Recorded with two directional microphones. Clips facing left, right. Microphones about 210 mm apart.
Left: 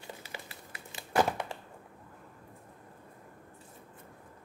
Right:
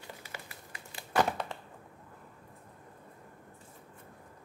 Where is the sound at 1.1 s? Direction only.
10° left (ahead or behind).